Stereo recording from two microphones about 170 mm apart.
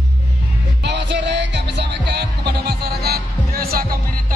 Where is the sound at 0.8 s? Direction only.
90° right; by 3.9 s 60° right (ahead or behind).